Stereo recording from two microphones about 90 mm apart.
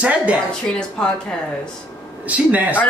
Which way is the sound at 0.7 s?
10° left (ahead or behind).